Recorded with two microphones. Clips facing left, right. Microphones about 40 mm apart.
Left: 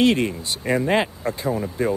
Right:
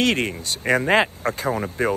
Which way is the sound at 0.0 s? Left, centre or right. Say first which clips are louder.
Left 3 dB; right.